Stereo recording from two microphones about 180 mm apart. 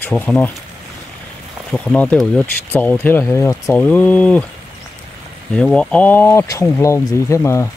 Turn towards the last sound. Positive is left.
turn(degrees=15)  # may be behind; listen again after turning